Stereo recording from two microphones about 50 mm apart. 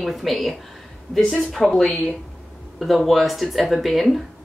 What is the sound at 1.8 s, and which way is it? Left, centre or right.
Speech, centre.